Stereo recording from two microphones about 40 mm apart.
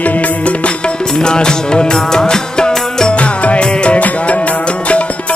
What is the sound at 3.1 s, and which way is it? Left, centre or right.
Music, left.